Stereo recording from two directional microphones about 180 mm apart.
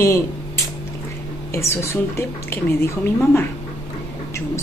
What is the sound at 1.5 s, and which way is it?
Speech, 15° left (ahead or behind).